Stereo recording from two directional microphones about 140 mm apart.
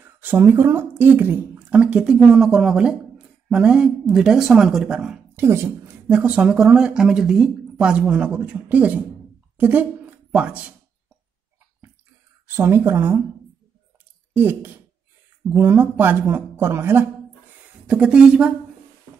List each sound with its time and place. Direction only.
0.0 s speech: 15° right (ahead or behind)
5.3 s speech: 15° right (ahead or behind)
12.4 s speech: 15° right (ahead or behind)
14.3 s speech: 15° right (ahead or behind)